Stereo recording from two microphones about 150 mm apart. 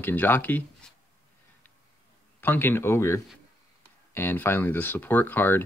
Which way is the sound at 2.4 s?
15° left (ahead or behind).